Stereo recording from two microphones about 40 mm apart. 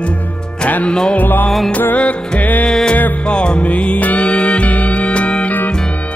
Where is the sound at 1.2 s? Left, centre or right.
Left.